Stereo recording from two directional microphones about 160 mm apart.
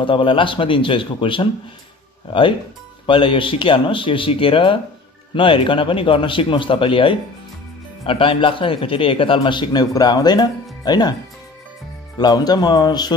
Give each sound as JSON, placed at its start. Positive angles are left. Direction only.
{"t": 0.0, "sound": "a man's voice", "side_deg": 30}
{"t": 3.1, "sound": "a man's voice", "side_deg": 35}
{"t": 12.2, "sound": "speech", "side_deg": 25}